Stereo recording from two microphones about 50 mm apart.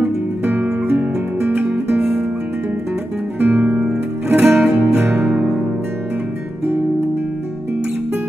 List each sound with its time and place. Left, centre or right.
0.0 s music: right
1.7 s music: centre
3.3 s music: right
4.4 s music: centre
5.2 s music: centre